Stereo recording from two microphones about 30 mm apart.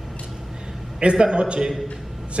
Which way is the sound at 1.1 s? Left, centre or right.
Right.